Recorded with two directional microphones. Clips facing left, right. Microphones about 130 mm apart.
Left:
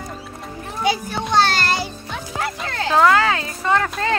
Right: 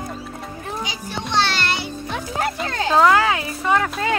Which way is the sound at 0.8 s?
50° left (ahead or behind).